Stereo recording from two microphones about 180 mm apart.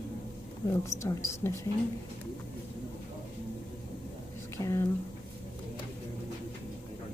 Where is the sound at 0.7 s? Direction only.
15° left (ahead or behind).